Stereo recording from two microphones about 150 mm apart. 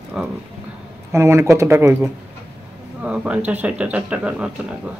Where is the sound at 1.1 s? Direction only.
15° right (ahead or behind).